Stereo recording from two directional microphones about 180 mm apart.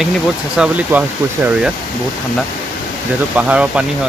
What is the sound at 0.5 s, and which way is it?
Speech, 5° right (ahead or behind).